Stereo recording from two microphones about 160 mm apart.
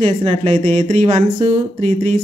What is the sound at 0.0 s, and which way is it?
A woman's voice, 40° right (ahead or behind).